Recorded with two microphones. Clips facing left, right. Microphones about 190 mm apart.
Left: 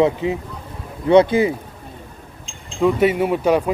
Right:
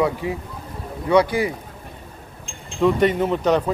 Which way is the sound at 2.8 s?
5° left (ahead or behind).